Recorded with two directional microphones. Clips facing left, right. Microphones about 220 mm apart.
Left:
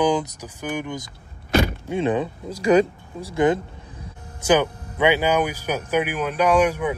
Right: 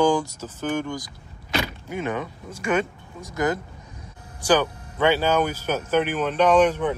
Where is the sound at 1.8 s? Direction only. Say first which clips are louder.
Left 6 dB; 30° left (ahead or behind).